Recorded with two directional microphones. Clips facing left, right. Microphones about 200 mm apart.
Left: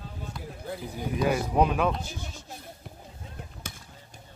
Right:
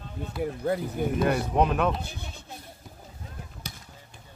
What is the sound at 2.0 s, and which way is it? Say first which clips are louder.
Speech: even; 60° right (ahead or behind).